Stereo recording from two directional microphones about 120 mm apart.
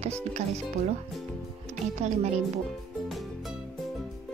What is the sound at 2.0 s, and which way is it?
Speech, 70° right (ahead or behind).